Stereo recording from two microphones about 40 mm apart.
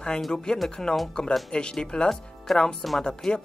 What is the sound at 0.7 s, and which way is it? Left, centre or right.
Speech, centre.